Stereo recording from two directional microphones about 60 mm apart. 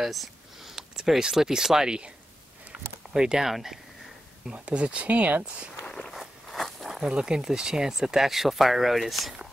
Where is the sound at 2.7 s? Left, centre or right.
Centre.